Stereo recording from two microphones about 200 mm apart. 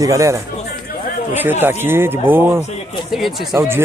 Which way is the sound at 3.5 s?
10° right (ahead or behind).